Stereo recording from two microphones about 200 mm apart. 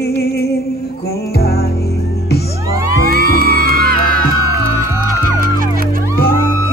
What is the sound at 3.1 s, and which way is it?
Music, 45° right (ahead or behind).